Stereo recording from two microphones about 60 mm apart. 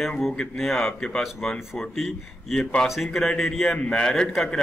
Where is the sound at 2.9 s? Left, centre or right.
Centre.